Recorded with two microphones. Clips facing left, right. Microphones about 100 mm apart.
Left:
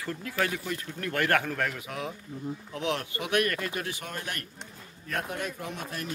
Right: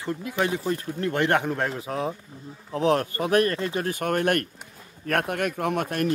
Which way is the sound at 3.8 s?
50° right (ahead or behind).